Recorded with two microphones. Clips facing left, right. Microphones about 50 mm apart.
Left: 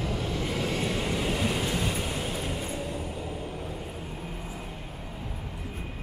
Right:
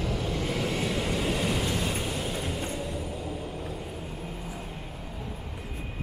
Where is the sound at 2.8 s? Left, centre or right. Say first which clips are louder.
Even; left.